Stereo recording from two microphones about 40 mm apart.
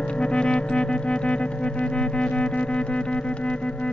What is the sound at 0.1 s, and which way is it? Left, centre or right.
Music, left.